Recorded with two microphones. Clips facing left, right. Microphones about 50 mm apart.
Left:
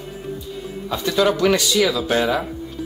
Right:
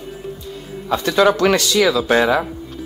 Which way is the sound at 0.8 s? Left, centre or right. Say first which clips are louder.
Right 4 dB; right.